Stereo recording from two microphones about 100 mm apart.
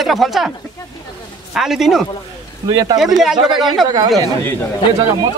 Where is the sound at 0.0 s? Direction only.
Centre (ahead or behind).